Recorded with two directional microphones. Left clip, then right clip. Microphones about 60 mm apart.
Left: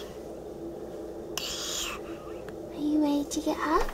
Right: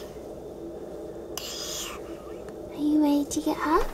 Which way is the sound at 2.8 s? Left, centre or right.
Right.